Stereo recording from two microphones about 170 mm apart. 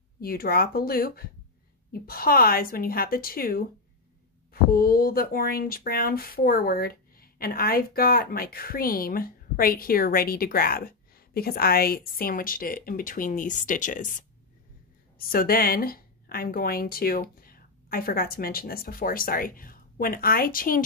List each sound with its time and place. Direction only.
0.2 s speech: 60° left (ahead or behind)
15.1 s a woman's voice: 60° left (ahead or behind)